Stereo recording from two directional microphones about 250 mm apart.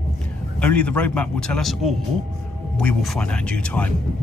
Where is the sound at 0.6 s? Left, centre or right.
Centre.